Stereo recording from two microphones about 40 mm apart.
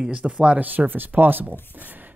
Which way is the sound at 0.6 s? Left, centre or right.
Right.